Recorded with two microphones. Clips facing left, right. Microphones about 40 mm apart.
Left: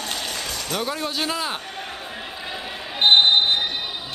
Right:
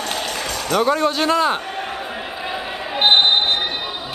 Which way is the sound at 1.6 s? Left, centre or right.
Right.